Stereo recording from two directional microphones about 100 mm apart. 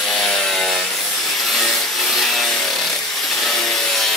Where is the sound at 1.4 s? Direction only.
Centre (ahead or behind).